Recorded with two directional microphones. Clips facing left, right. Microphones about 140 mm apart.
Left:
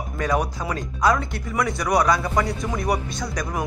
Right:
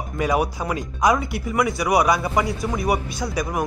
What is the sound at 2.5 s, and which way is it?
Speech, centre (ahead or behind).